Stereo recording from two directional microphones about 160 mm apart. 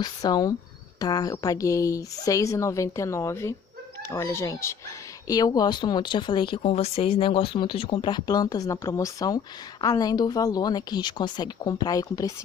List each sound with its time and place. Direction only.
0.0 s speech: 25° left (ahead or behind)